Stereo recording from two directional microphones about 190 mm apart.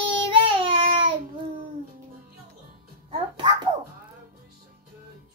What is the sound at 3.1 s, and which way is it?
Music, 25° right (ahead or behind).